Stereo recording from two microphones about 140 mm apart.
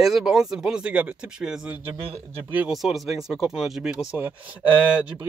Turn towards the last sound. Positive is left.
turn(degrees=-10)  # may be behind; listen again after turning